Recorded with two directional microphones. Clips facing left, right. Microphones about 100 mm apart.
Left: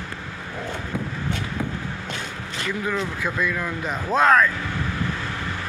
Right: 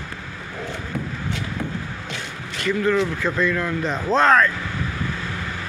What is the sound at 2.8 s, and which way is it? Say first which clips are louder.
A man's voice: right 6 dB; 10° left (ahead or behind).